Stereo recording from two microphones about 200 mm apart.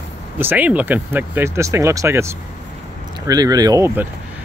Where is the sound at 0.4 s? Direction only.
10° right (ahead or behind).